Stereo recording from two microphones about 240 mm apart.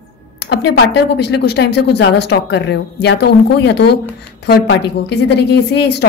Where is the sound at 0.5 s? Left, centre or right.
Left.